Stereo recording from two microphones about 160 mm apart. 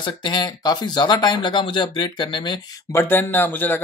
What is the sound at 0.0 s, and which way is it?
Speech, 30° left (ahead or behind).